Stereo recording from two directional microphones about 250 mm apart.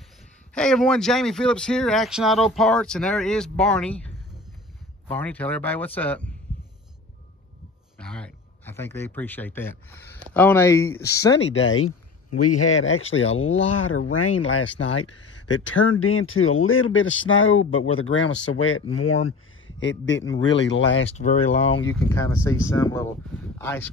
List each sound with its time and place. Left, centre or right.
0.6 s speech: centre
8.0 s speech: centre
11.5 s speech: left
12.3 s speech: left
19.8 s speech: left
21.0 s speech: left
22.1 s speech: centre